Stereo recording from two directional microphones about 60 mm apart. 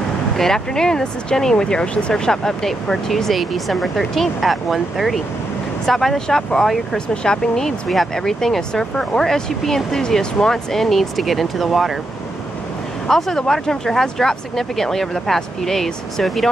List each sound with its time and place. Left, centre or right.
0.4 s speech: centre
13.0 s speech: centre